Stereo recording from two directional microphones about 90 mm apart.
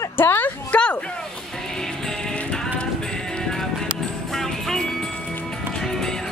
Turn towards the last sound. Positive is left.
turn(degrees=5)  # may be behind; listen again after turning